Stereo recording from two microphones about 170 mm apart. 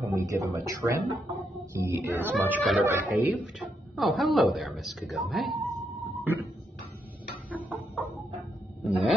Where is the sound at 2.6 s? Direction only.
5° left (ahead or behind).